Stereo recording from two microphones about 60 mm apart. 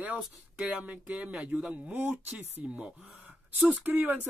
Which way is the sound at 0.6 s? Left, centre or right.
Centre.